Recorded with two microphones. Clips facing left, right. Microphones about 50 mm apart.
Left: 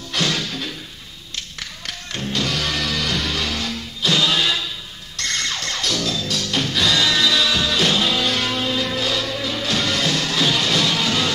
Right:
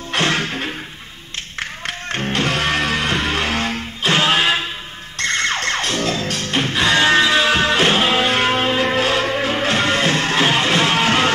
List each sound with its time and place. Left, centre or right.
0.1 s music: right